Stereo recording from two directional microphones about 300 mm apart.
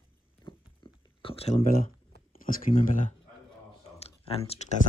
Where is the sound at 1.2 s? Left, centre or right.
Centre.